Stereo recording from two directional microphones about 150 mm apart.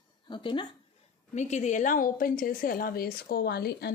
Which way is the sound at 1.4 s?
50° left (ahead or behind).